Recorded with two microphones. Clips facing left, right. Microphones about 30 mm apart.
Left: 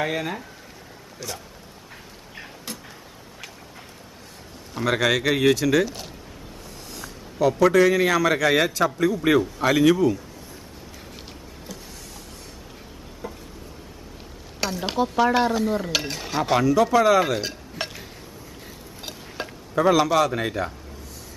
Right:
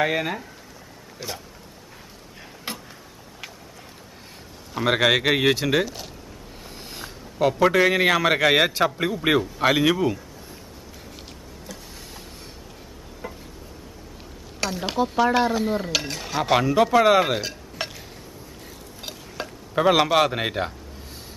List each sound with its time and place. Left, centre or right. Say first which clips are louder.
0.0 s speech: right 3 dB; centre
4.8 s speech: right 2 dB; right
6.9 s a man's voice: left 1 dB; right
13.2 s a sound: even; centre
14.9 s speech: even; centre
16.5 s speech: even; right
17.4 s dishes: even; centre
19.4 s stir: even; centre
19.8 s a man's voice: even; right